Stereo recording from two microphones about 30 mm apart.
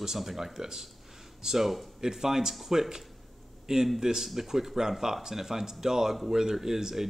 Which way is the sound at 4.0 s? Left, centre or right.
Centre.